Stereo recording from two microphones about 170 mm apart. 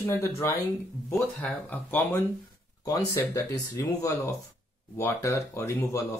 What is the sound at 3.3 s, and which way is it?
Speech, 20° left (ahead or behind).